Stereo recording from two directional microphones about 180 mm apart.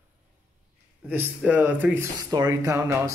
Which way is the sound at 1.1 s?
10° right (ahead or behind).